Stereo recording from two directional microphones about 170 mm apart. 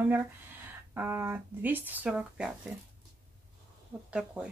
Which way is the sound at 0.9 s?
10° right (ahead or behind).